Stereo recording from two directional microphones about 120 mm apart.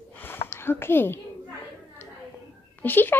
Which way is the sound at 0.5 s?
20° left (ahead or behind).